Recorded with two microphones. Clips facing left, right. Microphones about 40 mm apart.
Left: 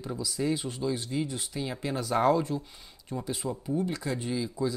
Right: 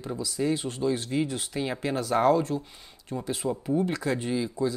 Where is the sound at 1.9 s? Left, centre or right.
Centre.